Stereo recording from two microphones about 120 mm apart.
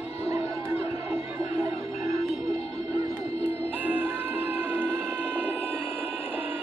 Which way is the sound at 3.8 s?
15° right (ahead or behind).